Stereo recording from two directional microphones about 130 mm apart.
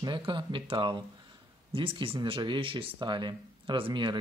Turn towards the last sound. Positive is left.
turn(degrees=-40)  # may be behind; listen again after turning